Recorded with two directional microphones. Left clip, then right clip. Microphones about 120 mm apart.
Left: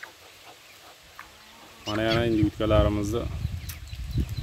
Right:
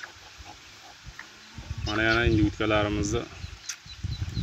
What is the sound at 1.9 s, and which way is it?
Speech, 25° left (ahead or behind).